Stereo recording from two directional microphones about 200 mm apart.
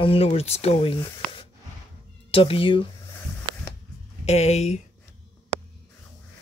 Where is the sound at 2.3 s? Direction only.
25° left (ahead or behind).